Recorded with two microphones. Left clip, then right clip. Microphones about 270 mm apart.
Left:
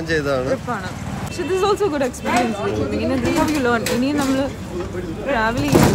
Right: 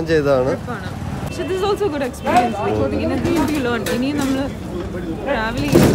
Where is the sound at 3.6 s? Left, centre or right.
Centre.